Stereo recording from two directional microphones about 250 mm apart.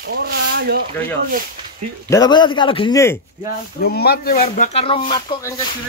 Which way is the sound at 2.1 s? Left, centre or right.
Centre.